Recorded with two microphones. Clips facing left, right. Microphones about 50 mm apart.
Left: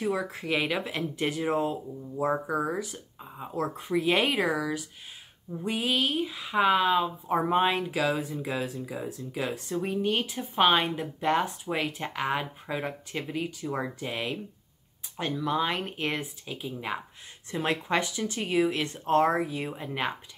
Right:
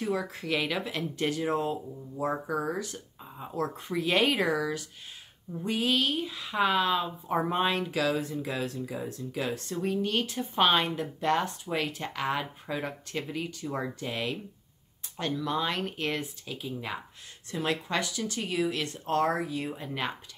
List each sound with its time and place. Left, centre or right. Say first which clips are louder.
0.0 s speech: left 2 dB; centre